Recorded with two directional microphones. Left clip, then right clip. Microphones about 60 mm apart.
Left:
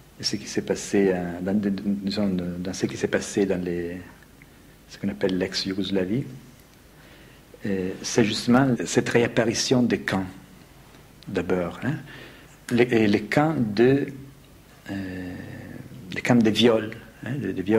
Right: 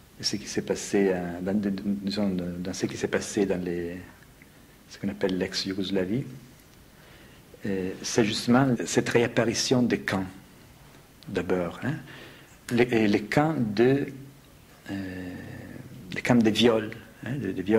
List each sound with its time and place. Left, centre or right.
0.2 s speech: left
7.6 s speech: left
11.3 s a man's voice: left